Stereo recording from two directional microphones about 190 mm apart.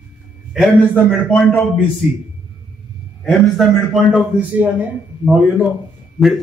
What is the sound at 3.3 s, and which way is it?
A man's voice, centre (ahead or behind).